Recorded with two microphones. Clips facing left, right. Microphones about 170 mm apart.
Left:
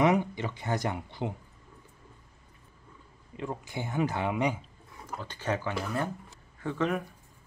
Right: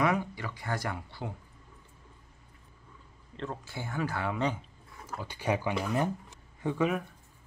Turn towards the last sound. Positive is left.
turn(degrees=-15)  # may be behind; listen again after turning